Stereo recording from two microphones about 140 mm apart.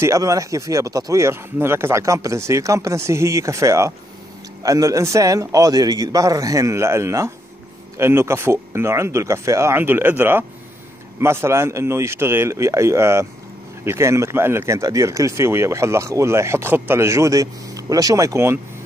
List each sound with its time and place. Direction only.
0.0 s speech: 25° right (ahead or behind)